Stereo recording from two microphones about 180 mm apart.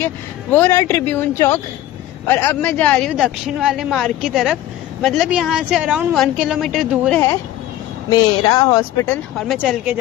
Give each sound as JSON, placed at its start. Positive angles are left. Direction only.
{"t": 0.0, "sound": "a woman's voice", "side_deg": 10}
{"t": 8.1, "sound": "speech", "side_deg": 25}
{"t": 9.5, "sound": "a woman's voice", "side_deg": 0}